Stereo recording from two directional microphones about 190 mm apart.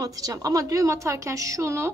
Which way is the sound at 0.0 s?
20° right (ahead or behind).